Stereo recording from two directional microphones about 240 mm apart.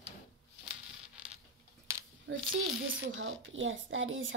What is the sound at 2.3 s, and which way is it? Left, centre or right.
Speech, right.